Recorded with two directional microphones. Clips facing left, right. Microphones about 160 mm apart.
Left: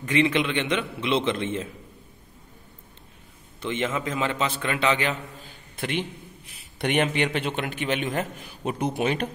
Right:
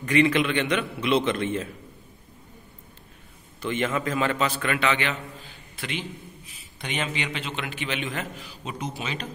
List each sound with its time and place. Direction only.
0.1 s a man's voice: 20° left (ahead or behind)
3.6 s a man's voice: 20° left (ahead or behind)
4.6 s a man's voice: 30° left (ahead or behind)
5.8 s a man's voice: 55° left (ahead or behind)